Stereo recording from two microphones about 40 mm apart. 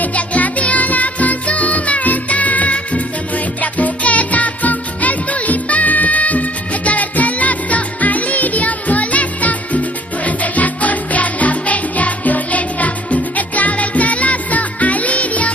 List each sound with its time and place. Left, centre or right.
0.0 s music: left